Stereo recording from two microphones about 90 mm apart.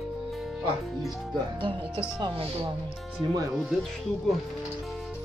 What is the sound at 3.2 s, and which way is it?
Speech, 60° right (ahead or behind).